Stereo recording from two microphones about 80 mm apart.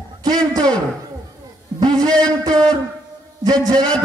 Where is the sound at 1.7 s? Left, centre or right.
Right.